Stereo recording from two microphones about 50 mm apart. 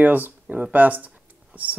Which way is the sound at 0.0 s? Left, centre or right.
Right.